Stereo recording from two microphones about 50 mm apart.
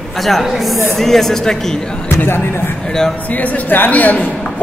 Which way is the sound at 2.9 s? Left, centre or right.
Centre.